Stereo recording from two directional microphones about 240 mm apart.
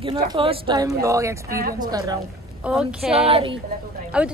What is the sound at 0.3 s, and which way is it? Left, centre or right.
A woman's voice, right.